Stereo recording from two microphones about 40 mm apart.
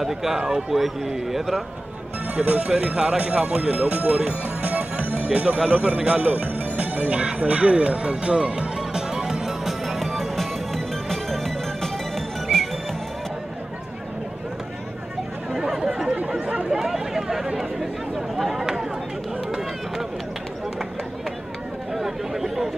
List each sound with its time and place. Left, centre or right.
0.0 s speech: centre
2.3 s speech: right
4.3 s music: right; by 10.2 s centre
11.1 s music: centre
15.5 s chatter: centre
16.2 s a sound: right
16.7 s a sound: centre
21.9 s chatter: centre